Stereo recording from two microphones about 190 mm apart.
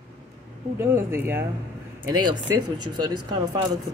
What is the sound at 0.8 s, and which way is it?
Speech, 10° right (ahead or behind).